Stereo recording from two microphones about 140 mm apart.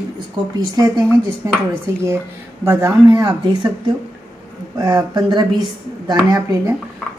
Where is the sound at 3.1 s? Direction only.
30° right (ahead or behind).